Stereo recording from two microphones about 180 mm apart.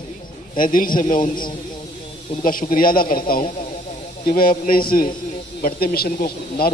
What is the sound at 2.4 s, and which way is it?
Speech, 50° left (ahead or behind).